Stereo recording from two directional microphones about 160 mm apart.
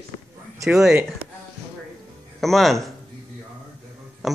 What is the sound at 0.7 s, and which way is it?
Speech, 5° right (ahead or behind).